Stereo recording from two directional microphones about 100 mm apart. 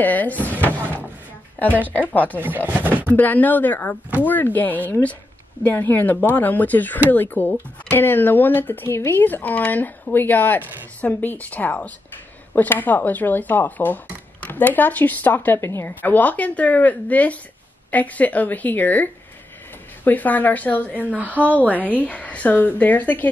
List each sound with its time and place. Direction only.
0.0 s speech: 15° left (ahead or behind)
2.7 s speech: 20° right (ahead or behind)
3.2 s speech: 15° left (ahead or behind)
20.1 s speech: 15° left (ahead or behind)
21.1 s speech: 15° right (ahead or behind)
22.0 s speech: 15° left (ahead or behind)